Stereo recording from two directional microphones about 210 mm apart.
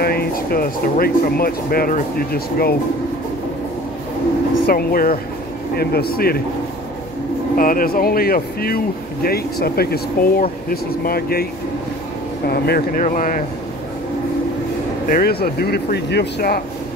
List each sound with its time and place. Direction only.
0.0 s speech: 50° left (ahead or behind)
4.6 s speech: 45° left (ahead or behind)
7.5 s speech: 40° left (ahead or behind)
12.4 s speech: 45° left (ahead or behind)
15.0 s speech: 45° left (ahead or behind)